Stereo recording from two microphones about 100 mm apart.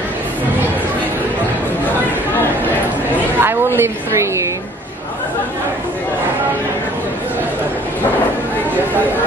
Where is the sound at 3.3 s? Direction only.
20° right (ahead or behind).